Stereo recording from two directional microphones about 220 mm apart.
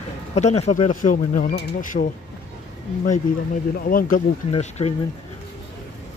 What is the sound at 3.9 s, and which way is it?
Speech, 40° left (ahead or behind).